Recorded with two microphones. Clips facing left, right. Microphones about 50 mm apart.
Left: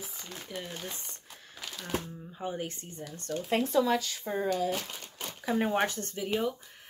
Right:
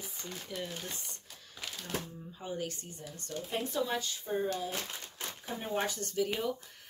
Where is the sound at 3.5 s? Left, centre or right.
Left.